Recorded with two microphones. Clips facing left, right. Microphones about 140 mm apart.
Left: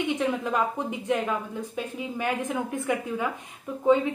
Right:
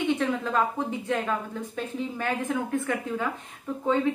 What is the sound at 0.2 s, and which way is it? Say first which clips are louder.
A woman's voice: even; 15° left (ahead or behind).